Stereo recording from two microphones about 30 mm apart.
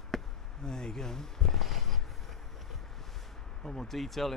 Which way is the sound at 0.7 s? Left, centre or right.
Left.